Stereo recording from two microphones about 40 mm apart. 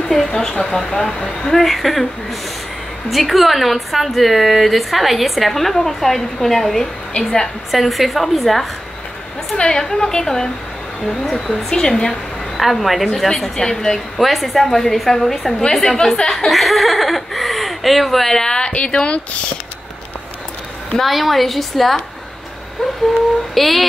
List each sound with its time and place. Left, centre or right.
0.1 s a woman's voice: centre
3.1 s a woman's voice: centre
7.2 s a woman's voice: left
7.7 s a woman's voice: centre
9.6 s a woman's voice: centre
12.5 s a woman's voice: centre
13.3 s a woman's voice: centre
14.1 s a woman's voice: centre; by 19.1 s left
21.0 s a woman's voice: centre
23.5 s a woman's voice: centre